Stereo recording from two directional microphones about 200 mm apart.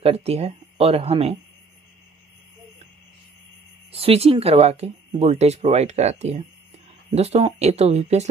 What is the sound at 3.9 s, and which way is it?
Speech, 30° right (ahead or behind).